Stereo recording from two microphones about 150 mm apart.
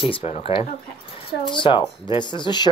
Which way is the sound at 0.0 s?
35° left (ahead or behind).